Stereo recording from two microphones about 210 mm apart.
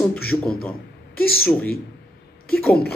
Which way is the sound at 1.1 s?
45° left (ahead or behind).